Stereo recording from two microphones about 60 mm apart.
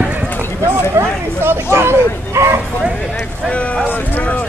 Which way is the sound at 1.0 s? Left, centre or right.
Right.